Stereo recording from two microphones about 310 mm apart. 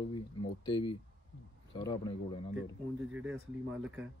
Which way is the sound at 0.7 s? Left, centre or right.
Centre.